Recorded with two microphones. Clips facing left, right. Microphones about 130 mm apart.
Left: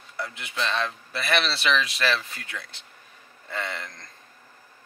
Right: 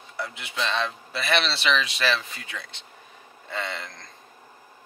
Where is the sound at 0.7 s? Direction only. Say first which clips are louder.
Right 1 dB; 20° right (ahead or behind).